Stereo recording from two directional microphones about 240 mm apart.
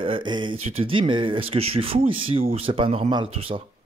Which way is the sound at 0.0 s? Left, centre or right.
Right.